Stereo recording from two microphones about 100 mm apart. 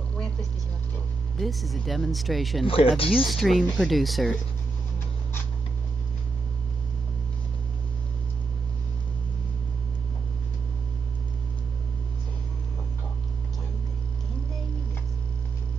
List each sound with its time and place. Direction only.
1.4 s speech: centre (ahead or behind)
2.6 s speech: 70° left (ahead or behind)
3.3 s speech: centre (ahead or behind)